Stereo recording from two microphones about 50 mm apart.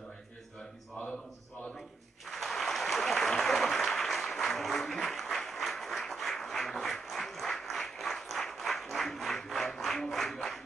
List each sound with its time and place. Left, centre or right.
2.2 s applause: centre